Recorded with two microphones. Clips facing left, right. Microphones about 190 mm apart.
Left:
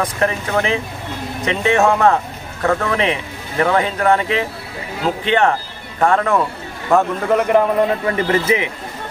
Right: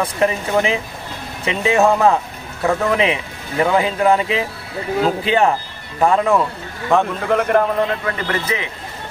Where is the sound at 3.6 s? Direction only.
10° right (ahead or behind).